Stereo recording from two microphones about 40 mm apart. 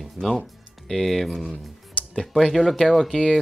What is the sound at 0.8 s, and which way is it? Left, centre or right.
Speech, centre.